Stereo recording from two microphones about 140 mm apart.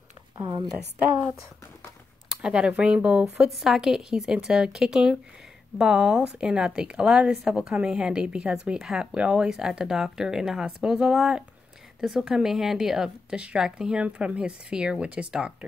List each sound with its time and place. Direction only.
0.4 s a woman's voice: 30° right (ahead or behind)
2.2 s speech: 5° right (ahead or behind)